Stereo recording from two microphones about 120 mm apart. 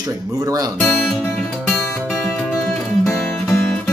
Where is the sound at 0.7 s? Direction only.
5° left (ahead or behind).